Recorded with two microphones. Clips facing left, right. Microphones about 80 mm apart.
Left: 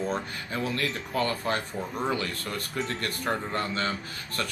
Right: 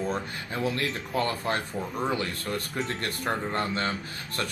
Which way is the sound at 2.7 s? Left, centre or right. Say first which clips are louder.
Even; right.